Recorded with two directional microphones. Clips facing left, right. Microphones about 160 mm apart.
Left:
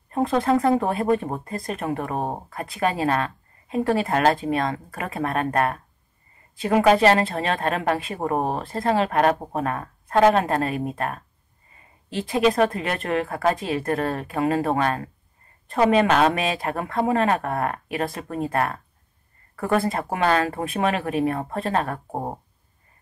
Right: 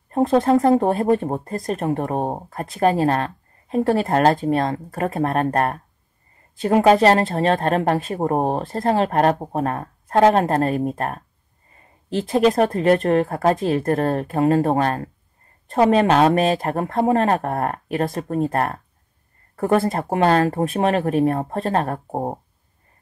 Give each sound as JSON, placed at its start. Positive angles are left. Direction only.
{"t": 0.1, "sound": "speech", "side_deg": -40}
{"t": 19.8, "sound": "speech", "side_deg": -40}